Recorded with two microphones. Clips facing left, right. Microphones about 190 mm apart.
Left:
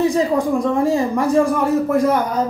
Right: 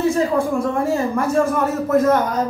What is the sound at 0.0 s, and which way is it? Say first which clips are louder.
Speech: left 1 dB; 15° left (ahead or behind).